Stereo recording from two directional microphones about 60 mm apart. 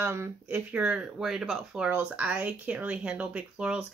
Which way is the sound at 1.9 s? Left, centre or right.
Right.